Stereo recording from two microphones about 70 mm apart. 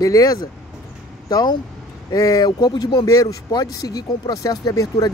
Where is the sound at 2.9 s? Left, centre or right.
Left.